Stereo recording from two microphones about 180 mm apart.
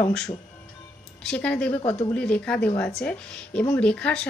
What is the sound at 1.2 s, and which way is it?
Speech, 5° left (ahead or behind).